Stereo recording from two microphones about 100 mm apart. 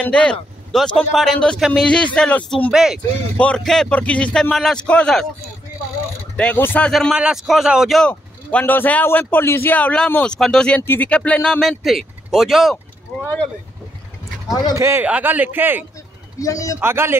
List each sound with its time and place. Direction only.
0.0 s speech: 10° left (ahead or behind)
2.7 s speech: 5° right (ahead or behind)
3.3 s speech: 10° left (ahead or behind)
6.3 s speech: 10° left (ahead or behind); by 8.0 s 5° right (ahead or behind)
8.0 s speech: 15° left (ahead or behind)
11.6 s speech: centre (ahead or behind)
14.5 s a man's voice: 40° left (ahead or behind)
14.8 s a man's voice: 25° right (ahead or behind)
15.0 s a man's voice: 15° right (ahead or behind)
16.3 s a man's voice: 35° left (ahead or behind)
16.8 s a man's voice: 25° right (ahead or behind)